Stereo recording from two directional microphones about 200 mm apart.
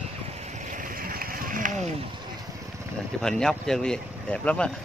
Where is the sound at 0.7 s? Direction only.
40° right (ahead or behind).